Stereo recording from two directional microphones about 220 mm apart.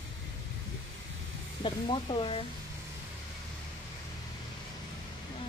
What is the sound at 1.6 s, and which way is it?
Speech, 25° left (ahead or behind).